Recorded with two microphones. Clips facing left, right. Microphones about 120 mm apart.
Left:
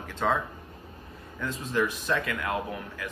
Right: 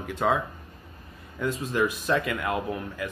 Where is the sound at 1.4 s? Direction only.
15° right (ahead or behind).